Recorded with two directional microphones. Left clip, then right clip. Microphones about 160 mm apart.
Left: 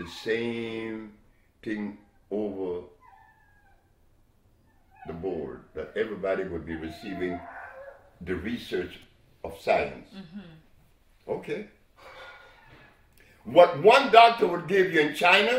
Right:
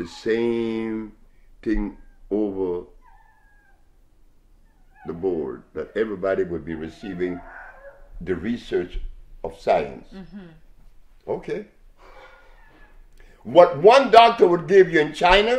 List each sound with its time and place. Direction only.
0.0 s mantra: 45° right (ahead or behind)
1.6 s speech: 45° right (ahead or behind)
5.0 s speech: 40° right (ahead or behind)
8.2 s mantra: 45° right (ahead or behind)
9.4 s speech: 40° right (ahead or behind)
13.5 s speech: 40° right (ahead or behind)